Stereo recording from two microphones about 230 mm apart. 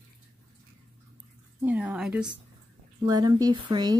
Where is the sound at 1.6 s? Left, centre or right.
Centre.